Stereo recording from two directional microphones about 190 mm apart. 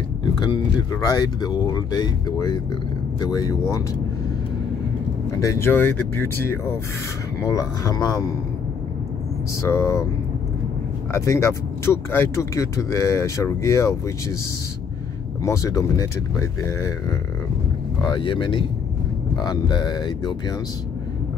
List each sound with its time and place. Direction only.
0.4 s speech: 25° left (ahead or behind)
5.4 s speech: 15° left (ahead or behind)
9.6 s speech: 15° left (ahead or behind)
11.1 s speech: 15° left (ahead or behind)
15.4 s speech: 15° left (ahead or behind)
18.0 s speech: 25° left (ahead or behind)